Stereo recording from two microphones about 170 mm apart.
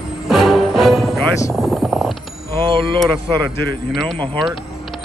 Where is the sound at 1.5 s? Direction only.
Centre (ahead or behind).